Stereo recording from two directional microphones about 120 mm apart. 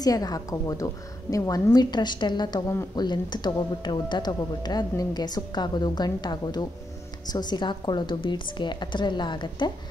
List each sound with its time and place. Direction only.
0.0 s speech: 30° left (ahead or behind)